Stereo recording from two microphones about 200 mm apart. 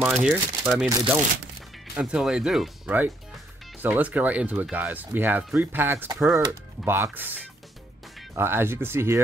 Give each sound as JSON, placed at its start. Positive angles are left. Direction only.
{"t": 0.0, "sound": "speech", "side_deg": 0}
{"t": 2.0, "sound": "speech", "side_deg": -5}
{"t": 8.4, "sound": "speech", "side_deg": -10}